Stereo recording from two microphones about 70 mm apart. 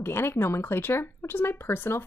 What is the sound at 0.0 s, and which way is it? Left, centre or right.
A woman's voice, left.